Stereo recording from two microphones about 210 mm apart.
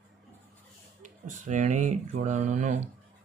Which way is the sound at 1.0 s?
35° right (ahead or behind).